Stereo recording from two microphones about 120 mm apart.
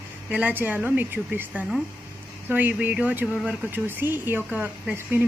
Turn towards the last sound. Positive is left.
turn(degrees=-15)  # may be behind; listen again after turning